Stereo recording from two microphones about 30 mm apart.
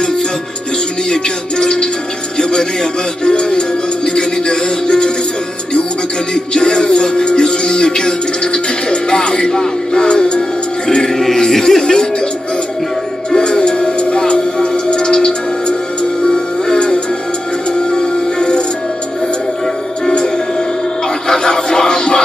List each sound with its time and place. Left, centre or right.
1.1 s music: left
6.3 s music: left
11.1 s music: centre
13.3 s music: left
21.3 s music: left